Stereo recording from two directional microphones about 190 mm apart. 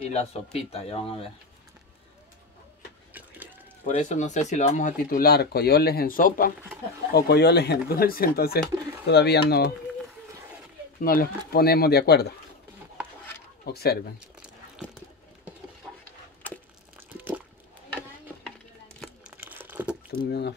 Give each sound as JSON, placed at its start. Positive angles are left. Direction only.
{"t": 0.1, "sound": "speech", "side_deg": 35}
{"t": 3.1, "sound": "a sound", "side_deg": -10}
{"t": 3.8, "sound": "speech", "side_deg": 40}
{"t": 7.2, "sound": "speech", "side_deg": 60}
{"t": 11.0, "sound": "speech", "side_deg": 50}
{"t": 13.7, "sound": "speech", "side_deg": 55}
{"t": 16.9, "sound": "a sound", "side_deg": -10}
{"t": 18.9, "sound": "crumpling", "side_deg": -5}
{"t": 20.2, "sound": "speech", "side_deg": 60}